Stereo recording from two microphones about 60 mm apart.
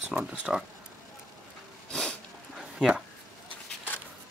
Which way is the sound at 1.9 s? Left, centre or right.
Centre.